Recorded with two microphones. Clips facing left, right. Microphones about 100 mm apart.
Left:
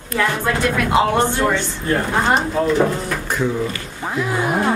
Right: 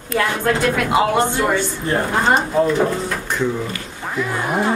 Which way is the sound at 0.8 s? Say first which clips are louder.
Left 2 dB; 5° right (ahead or behind).